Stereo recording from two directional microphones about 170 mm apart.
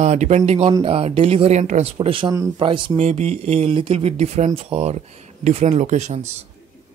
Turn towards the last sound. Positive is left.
turn(degrees=-40)  # may be behind; listen again after turning